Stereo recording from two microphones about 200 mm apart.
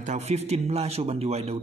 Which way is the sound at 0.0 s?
35° right (ahead or behind).